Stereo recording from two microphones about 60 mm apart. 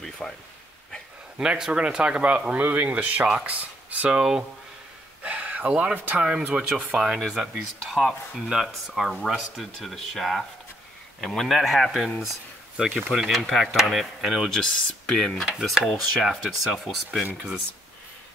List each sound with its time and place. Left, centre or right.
0.2 s speech: centre
1.4 s speech: centre
4.1 s speech: centre
5.2 s a sound: right
6.0 s speech: right
7.2 s speech: centre
15.4 s speech: centre